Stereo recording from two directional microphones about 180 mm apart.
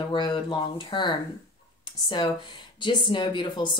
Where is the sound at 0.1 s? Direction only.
25° left (ahead or behind).